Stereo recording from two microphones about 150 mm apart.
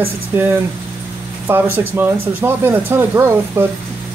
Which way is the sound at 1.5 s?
15° right (ahead or behind).